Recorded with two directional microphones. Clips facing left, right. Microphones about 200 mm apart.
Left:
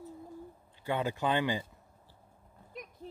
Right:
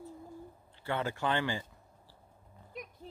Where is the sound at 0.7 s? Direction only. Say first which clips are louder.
Left 2 dB; 15° left (ahead or behind).